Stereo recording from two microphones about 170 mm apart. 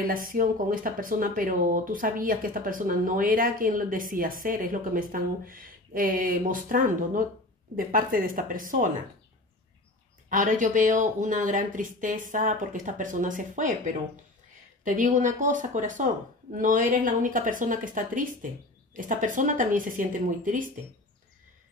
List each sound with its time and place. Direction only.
0.0 s speech: 55° right (ahead or behind)
10.3 s speech: 50° right (ahead or behind)